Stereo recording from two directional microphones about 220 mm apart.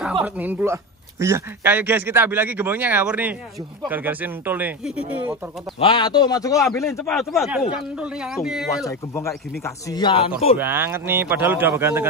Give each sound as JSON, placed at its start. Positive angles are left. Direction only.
{"t": 0.2, "sound": "a man's voice", "side_deg": -10}
{"t": 5.8, "sound": "a man's voice", "side_deg": 20}
{"t": 7.1, "sound": "speech", "side_deg": 0}
{"t": 8.8, "sound": "a man's voice", "side_deg": 15}
{"t": 10.6, "sound": "a man's voice", "side_deg": -10}